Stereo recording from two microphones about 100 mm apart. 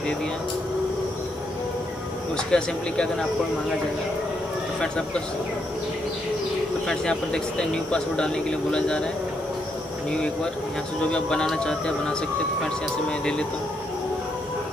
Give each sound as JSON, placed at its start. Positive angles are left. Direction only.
{"t": 2.3, "sound": "speech", "side_deg": 10}
{"t": 4.7, "sound": "speech", "side_deg": 10}
{"t": 6.9, "sound": "speech", "side_deg": 10}
{"t": 10.1, "sound": "speech", "side_deg": 10}
{"t": 13.2, "sound": "speech", "side_deg": 10}